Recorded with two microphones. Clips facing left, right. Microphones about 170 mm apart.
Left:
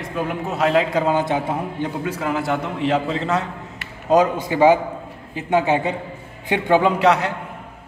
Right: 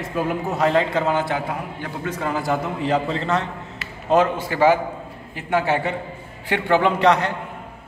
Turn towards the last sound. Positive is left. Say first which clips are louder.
# left 1 dB
turn(degrees=5)  # may be behind; listen again after turning